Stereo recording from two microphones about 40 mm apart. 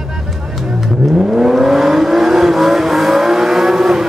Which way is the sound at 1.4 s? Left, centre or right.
Centre.